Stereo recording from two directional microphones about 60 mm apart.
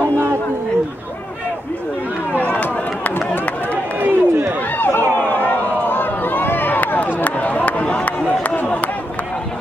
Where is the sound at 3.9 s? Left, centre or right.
Right.